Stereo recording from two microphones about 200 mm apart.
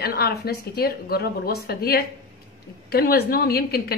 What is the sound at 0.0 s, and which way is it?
Speech, 50° left (ahead or behind).